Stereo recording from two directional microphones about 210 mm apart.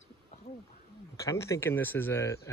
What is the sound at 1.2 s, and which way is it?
Speech, 15° left (ahead or behind).